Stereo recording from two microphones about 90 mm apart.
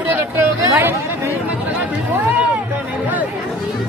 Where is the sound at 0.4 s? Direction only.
25° right (ahead or behind).